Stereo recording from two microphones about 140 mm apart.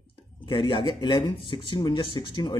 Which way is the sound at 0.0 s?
40° left (ahead or behind).